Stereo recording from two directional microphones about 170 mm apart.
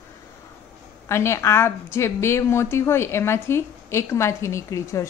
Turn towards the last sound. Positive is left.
turn(degrees=20)  # may be behind; listen again after turning